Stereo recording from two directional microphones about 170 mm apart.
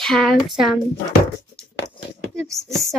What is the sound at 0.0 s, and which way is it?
Speech, centre (ahead or behind).